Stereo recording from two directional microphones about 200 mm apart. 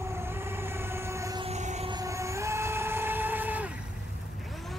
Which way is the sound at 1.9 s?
15° right (ahead or behind).